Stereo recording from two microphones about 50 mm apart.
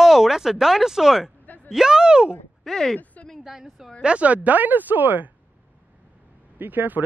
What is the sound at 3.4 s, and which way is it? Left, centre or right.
Speech, centre.